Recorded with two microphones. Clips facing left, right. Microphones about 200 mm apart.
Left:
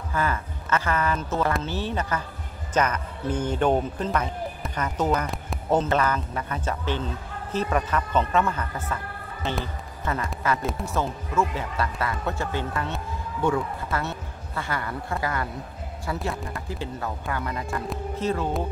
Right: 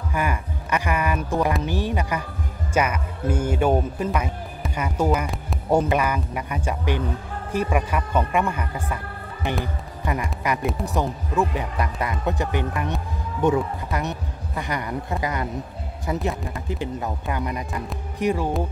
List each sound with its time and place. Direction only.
0.1 s a man's voice: 15° right (ahead or behind)